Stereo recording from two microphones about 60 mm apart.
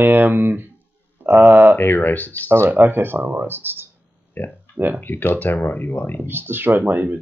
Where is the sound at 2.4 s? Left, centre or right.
Right.